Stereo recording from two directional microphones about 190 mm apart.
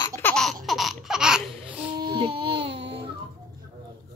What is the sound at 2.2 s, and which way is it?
Baby cry, 25° right (ahead or behind).